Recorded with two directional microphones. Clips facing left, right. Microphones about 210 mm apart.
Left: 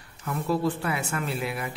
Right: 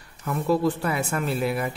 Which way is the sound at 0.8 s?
40° right (ahead or behind).